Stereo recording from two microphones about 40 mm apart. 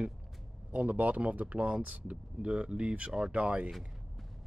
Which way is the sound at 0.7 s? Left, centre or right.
Right.